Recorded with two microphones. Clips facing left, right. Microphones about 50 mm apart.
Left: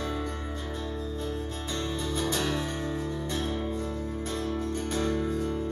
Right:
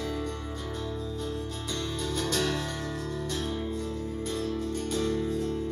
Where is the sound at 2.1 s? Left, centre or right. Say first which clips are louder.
Even; centre.